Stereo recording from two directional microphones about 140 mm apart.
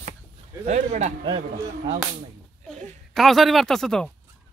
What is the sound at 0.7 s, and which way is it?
Speech, 60° right (ahead or behind).